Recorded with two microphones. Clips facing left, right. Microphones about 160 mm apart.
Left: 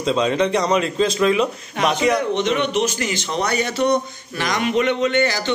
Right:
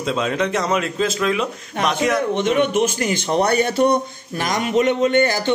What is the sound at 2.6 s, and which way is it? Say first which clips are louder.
A man's voice: right 2 dB; 50° right (ahead or behind).